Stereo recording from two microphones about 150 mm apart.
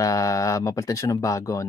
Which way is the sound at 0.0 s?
20° left (ahead or behind).